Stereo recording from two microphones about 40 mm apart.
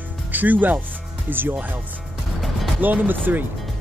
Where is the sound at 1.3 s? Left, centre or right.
Right.